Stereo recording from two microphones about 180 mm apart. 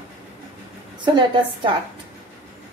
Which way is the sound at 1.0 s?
25° right (ahead or behind).